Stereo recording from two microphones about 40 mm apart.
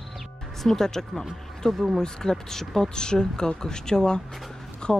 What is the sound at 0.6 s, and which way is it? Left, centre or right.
Speech, centre.